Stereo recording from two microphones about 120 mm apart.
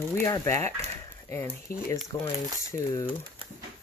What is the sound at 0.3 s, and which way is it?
Speech, 25° left (ahead or behind).